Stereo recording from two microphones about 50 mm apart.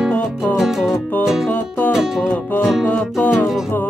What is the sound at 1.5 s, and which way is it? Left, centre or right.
Music, left.